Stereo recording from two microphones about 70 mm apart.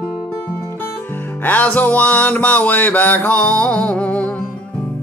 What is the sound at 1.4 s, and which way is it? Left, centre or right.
Music, left.